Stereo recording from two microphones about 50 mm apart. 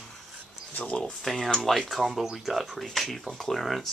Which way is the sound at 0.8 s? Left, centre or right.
Left.